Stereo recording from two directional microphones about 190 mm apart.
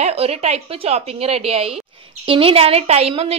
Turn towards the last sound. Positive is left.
turn(degrees=-30)  # may be behind; listen again after turning